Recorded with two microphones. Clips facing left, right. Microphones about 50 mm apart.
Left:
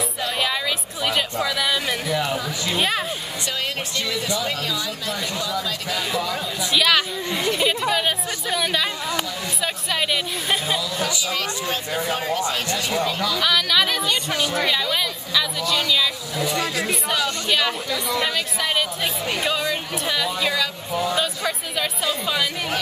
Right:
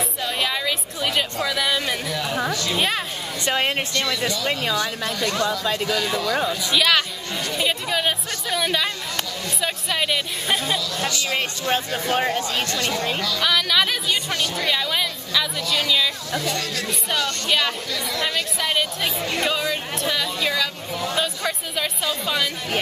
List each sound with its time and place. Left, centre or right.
0.2 s music: centre
1.4 s speech: centre
3.4 s speech: right
5.9 s speech: centre
6.7 s chatter: centre
7.9 s speech: centre
11.3 s speech: right
13.4 s speech: centre
14.3 s speech: centre
14.7 s speech: centre
16.3 s speech: centre
17.1 s speech: centre
21.2 s speech: centre